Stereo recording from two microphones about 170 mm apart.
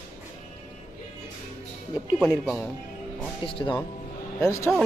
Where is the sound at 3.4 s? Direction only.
30° left (ahead or behind).